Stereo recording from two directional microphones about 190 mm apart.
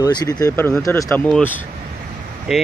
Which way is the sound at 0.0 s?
20° left (ahead or behind).